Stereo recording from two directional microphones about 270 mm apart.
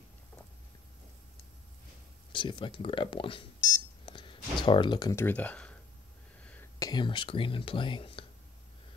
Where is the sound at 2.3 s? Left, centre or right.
Centre.